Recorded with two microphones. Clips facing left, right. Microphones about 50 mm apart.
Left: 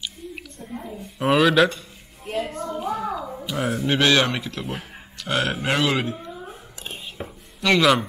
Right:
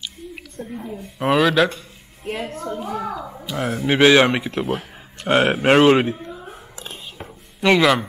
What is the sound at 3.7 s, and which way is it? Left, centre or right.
Speech, centre.